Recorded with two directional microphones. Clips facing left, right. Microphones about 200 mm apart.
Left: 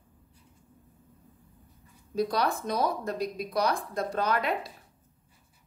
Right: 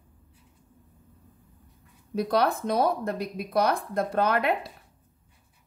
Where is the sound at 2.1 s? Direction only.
60° right (ahead or behind).